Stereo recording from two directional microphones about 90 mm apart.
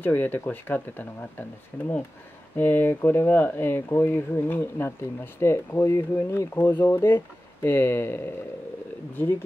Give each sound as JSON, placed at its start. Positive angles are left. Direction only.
{"t": 0.0, "sound": "speech", "side_deg": 20}
{"t": 2.5, "sound": "speech", "side_deg": 20}